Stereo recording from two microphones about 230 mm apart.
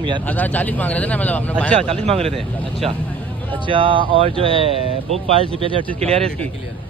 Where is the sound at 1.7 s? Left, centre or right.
Right.